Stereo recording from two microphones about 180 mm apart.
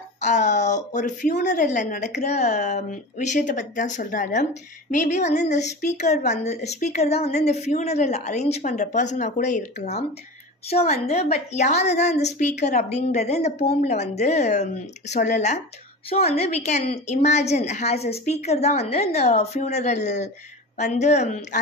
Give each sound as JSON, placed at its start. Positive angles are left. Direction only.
{"t": 0.2, "sound": "a woman's voice", "side_deg": 40}